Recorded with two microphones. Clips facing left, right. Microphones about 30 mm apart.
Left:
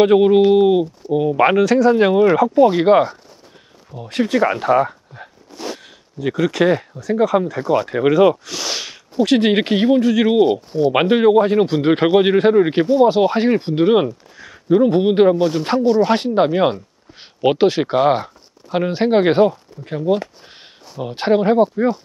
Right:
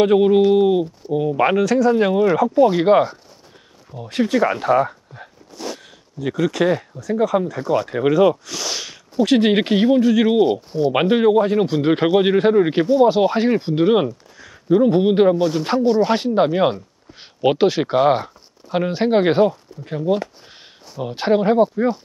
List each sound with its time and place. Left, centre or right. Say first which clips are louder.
0.0 s speech: left 2 dB; centre
5.6 s a sound: left 1 dB; centre
6.1 s speech: left 2 dB; centre